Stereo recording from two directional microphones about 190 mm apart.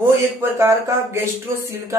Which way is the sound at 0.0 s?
10° right (ahead or behind).